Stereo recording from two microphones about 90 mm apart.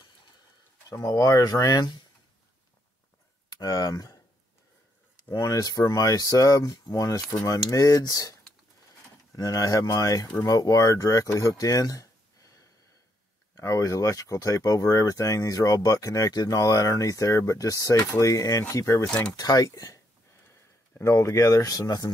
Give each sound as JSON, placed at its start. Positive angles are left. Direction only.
{"t": 0.8, "sound": "speech", "side_deg": 45}
{"t": 3.5, "sound": "speech", "side_deg": 45}
{"t": 5.3, "sound": "speech", "side_deg": 40}
{"t": 11.3, "sound": "a sound", "side_deg": 40}
{"t": 13.6, "sound": "speech", "side_deg": 40}
{"t": 19.0, "sound": "speech", "side_deg": 15}
{"t": 19.3, "sound": "speech", "side_deg": 45}
{"t": 21.0, "sound": "speech", "side_deg": 35}